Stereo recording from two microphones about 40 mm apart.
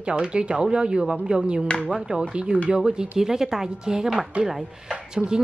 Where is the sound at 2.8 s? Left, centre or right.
Centre.